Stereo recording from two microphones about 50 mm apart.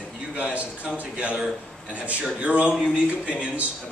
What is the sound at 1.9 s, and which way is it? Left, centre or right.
A man's voice, right.